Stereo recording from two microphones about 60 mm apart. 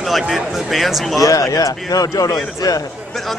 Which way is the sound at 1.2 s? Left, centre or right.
Left.